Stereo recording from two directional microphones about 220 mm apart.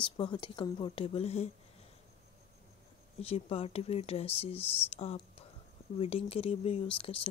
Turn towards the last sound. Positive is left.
turn(degrees=25)  # may be behind; listen again after turning